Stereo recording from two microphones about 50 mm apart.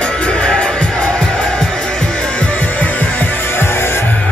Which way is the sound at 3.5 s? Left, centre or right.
Left.